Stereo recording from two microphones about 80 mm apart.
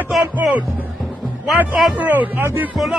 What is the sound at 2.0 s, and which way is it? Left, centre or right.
Speech, right.